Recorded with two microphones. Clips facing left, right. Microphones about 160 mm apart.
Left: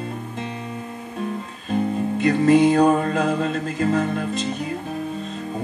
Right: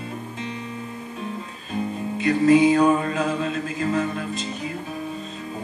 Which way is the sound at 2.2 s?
45° left (ahead or behind).